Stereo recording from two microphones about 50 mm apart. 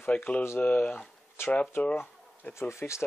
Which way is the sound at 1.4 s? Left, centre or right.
Left.